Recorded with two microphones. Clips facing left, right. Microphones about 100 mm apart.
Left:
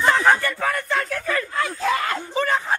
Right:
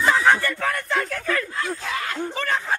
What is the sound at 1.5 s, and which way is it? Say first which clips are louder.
Speech: left 5 dB; 70° left (ahead or behind).